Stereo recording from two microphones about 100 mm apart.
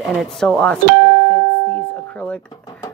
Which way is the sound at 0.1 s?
Centre (ahead or behind).